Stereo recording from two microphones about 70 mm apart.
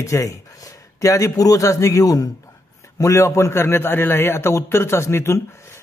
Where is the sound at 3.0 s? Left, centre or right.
Left.